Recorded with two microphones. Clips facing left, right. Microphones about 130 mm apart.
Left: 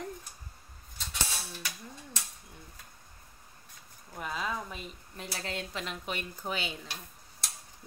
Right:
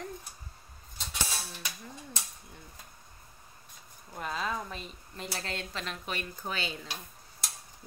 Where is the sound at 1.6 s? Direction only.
15° right (ahead or behind).